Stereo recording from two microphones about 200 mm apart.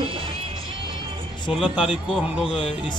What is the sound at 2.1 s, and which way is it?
Speech, 5° right (ahead or behind).